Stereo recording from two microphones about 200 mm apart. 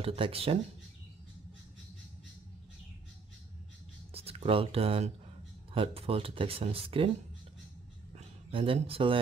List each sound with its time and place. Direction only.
0.0 s speech: 30° right (ahead or behind)
4.1 s speech: 30° right (ahead or behind)
8.1 s a sound: 25° right (ahead or behind)